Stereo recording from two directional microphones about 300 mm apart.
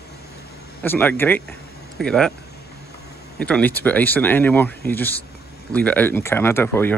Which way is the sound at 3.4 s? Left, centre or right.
Centre.